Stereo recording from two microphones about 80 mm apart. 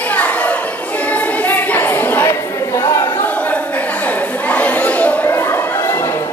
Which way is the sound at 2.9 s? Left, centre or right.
Left.